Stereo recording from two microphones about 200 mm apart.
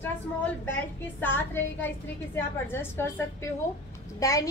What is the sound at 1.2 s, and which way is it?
A child's voice, 10° left (ahead or behind).